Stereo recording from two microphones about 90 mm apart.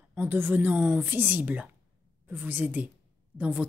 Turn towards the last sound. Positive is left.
turn(degrees=-20)  # may be behind; listen again after turning